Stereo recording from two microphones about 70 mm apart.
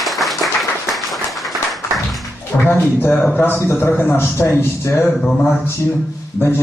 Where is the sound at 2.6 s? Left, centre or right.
Left.